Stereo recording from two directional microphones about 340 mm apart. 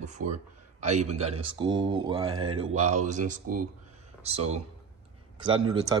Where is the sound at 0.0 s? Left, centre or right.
Right.